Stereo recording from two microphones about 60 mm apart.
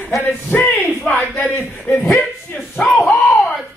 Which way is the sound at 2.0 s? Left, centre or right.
Left.